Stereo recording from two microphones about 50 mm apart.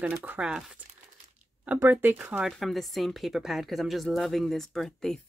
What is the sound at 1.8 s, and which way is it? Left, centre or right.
Speech, right.